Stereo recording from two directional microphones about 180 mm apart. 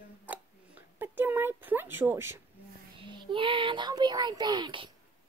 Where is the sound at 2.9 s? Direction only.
25° right (ahead or behind).